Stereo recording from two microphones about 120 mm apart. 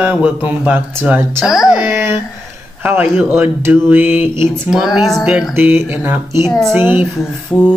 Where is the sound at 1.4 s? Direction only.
5° right (ahead or behind).